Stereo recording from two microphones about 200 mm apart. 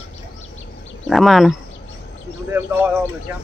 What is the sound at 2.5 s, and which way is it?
Speech, 10° right (ahead or behind).